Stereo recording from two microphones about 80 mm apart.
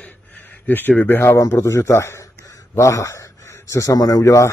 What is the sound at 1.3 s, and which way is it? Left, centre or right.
Speech, left.